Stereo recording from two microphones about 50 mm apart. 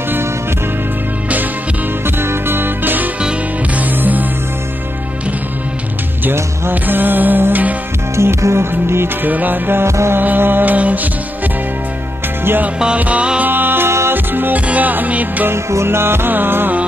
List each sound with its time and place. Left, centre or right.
2.0 s music: right
6.7 s music: right
8.2 s music: right
9.3 s music: right
9.8 s music: right
10.1 s music: right
12.7 s music: centre
13.5 s music: right
15.5 s music: right